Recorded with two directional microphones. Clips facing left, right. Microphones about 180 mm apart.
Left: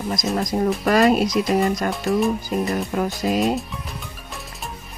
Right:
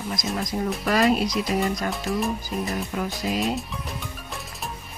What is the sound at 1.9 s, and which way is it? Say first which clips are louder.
Speech: left 6 dB; centre (ahead or behind).